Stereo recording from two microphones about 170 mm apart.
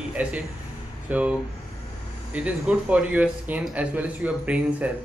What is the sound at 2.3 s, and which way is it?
Speech, 5° right (ahead or behind).